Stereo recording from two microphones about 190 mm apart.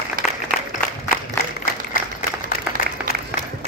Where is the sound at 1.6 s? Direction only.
45° left (ahead or behind).